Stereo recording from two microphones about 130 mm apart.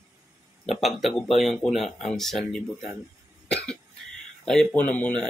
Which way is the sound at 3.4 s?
5° left (ahead or behind).